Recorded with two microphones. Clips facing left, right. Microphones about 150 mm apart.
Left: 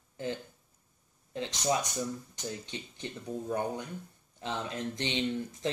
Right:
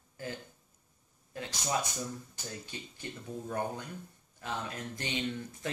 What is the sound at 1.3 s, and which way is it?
Speech, 20° left (ahead or behind).